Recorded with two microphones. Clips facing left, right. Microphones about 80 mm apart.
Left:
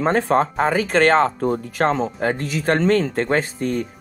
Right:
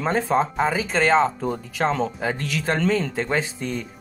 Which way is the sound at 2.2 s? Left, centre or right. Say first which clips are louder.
Left 4 dB; left.